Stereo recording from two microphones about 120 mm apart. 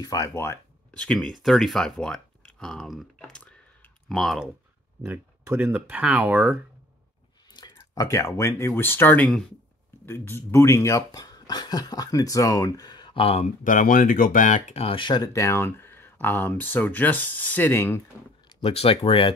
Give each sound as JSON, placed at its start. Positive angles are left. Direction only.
{"t": 0.0, "sound": "speech", "side_deg": 30}
{"t": 0.9, "sound": "speech", "side_deg": 5}
{"t": 5.0, "sound": "speech", "side_deg": -20}
{"t": 7.5, "sound": "speech", "side_deg": 35}
{"t": 14.3, "sound": "speech", "side_deg": 90}
{"t": 14.8, "sound": "speech", "side_deg": 45}
{"t": 18.6, "sound": "speech", "side_deg": 55}